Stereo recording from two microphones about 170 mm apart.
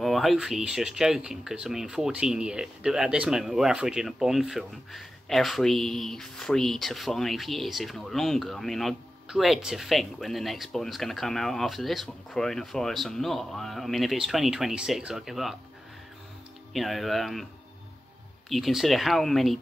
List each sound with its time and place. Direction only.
0.0 s speech: centre (ahead or behind)
16.7 s speech: centre (ahead or behind)
18.5 s speech: centre (ahead or behind)